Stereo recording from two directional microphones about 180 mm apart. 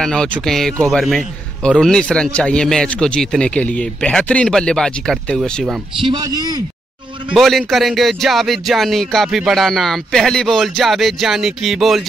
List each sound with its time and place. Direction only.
0.0 s speech: 5° left (ahead or behind)
6.0 s a man's voice: 25° right (ahead or behind)
7.3 s speech: centre (ahead or behind)